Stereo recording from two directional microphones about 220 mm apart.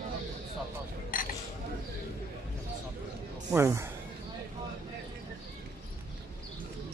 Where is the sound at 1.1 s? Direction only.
40° left (ahead or behind).